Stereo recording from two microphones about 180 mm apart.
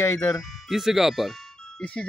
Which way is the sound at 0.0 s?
15° left (ahead or behind).